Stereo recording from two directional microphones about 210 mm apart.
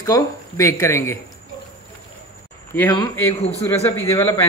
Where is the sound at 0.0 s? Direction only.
15° left (ahead or behind).